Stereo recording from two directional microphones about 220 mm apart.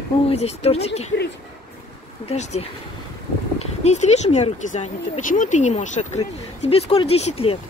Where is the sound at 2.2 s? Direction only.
30° left (ahead or behind).